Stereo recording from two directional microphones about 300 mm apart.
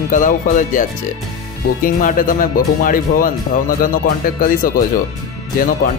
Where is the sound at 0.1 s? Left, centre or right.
Left.